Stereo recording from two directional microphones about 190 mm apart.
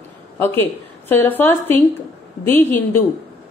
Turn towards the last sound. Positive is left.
turn(degrees=10)  # may be behind; listen again after turning